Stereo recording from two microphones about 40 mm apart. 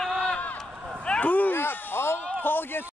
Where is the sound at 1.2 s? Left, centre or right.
Left.